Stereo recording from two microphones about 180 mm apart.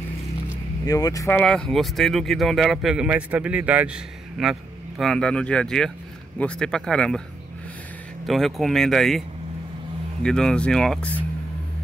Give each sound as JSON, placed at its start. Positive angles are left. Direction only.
{"t": 0.8, "sound": "speech", "side_deg": 20}
{"t": 1.4, "sound": "speech", "side_deg": 5}
{"t": 8.3, "sound": "speech", "side_deg": 0}
{"t": 10.2, "sound": "speech", "side_deg": 5}